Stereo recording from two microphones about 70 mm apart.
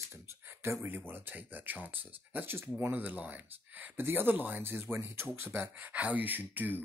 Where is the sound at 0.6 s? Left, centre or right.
Right.